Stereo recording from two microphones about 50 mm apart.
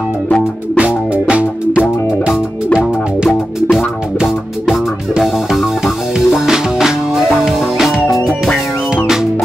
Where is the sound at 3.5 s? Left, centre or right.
Centre.